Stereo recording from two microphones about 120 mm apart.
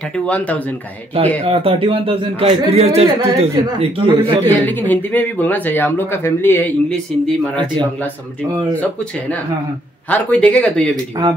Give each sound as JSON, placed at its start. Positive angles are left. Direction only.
{"t": 1.4, "sound": "speech", "side_deg": -55}
{"t": 4.5, "sound": "speech", "side_deg": 15}
{"t": 10.0, "sound": "speech", "side_deg": 10}